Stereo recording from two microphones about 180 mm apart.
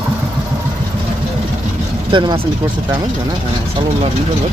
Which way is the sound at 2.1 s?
30° right (ahead or behind).